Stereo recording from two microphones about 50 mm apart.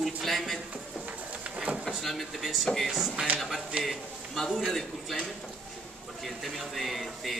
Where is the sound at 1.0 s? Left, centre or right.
Right.